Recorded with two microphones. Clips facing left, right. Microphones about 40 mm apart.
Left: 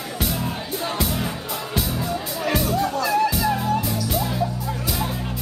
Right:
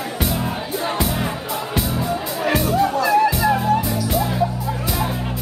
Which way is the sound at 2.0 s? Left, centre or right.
Centre.